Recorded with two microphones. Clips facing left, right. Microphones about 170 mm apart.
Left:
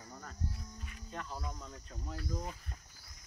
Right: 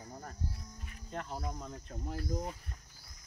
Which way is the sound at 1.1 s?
50° right (ahead or behind).